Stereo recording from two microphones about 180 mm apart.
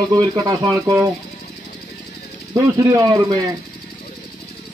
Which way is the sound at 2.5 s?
20° right (ahead or behind).